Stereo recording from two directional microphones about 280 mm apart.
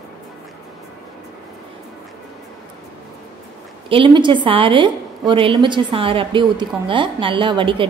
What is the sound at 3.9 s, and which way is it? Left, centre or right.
A woman's voice, centre.